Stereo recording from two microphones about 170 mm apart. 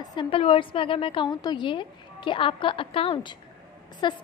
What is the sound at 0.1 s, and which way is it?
A woman's voice, 30° left (ahead or behind).